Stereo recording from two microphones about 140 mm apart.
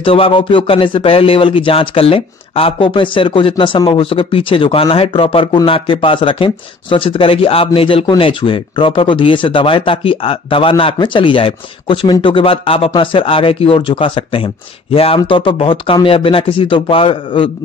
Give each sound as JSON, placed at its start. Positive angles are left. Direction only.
{"t": 0.0, "sound": "speech", "side_deg": 40}